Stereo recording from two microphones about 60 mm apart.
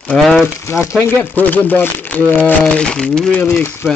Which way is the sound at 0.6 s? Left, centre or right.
Left.